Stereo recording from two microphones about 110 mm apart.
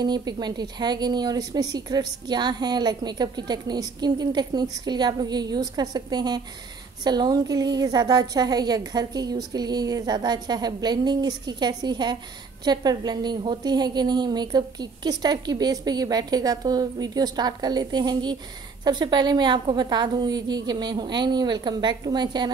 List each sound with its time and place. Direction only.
0.0 s a woman's voice: 40° right (ahead or behind)